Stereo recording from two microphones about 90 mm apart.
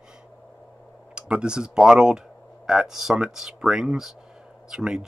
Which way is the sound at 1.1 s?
10° right (ahead or behind).